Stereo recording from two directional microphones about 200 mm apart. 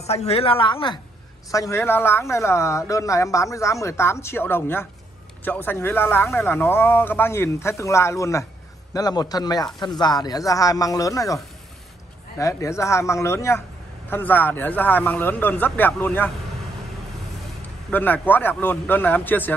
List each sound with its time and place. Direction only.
0.0 s speech: 30° left (ahead or behind); by 16.3 s 10° left (ahead or behind)
17.9 s speech: 10° left (ahead or behind)